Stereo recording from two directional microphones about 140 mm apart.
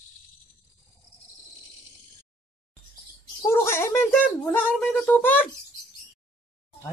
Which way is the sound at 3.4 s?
15° left (ahead or behind).